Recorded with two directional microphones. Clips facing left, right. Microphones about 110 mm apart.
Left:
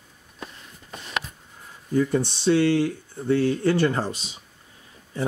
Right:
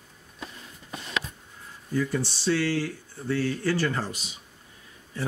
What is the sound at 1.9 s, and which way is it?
Speech, 25° left (ahead or behind).